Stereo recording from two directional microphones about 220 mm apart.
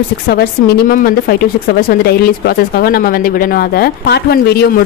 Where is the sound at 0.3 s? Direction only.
45° left (ahead or behind).